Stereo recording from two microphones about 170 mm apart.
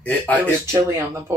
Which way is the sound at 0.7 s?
15° right (ahead or behind).